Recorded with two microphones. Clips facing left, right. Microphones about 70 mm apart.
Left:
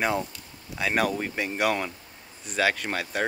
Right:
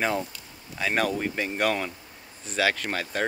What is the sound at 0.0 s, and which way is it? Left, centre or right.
Speech, centre.